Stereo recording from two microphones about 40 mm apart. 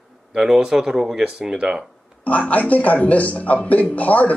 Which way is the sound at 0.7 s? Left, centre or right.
Centre.